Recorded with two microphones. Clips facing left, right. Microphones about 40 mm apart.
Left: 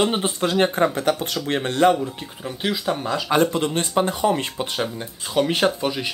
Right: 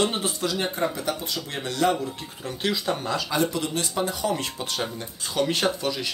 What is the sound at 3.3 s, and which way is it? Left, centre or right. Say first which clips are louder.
Speech: left 8 dB; left.